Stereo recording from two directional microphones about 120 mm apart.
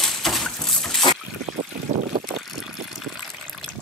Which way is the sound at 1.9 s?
75° right (ahead or behind).